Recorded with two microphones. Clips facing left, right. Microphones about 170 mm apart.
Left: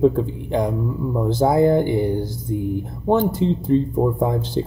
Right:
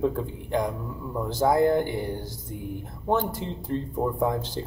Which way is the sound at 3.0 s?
20° left (ahead or behind).